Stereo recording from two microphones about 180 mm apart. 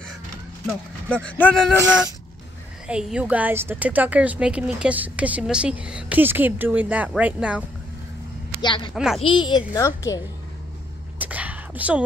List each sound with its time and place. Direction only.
1.1 s speech: 5° left (ahead or behind)
2.9 s a woman's voice: 5° right (ahead or behind)
8.5 s a child's voice: 25° left (ahead or behind)
8.9 s a woman's voice: 5° right (ahead or behind)
9.2 s a child's voice: 25° left (ahead or behind)
11.1 s whispering: 10° right (ahead or behind)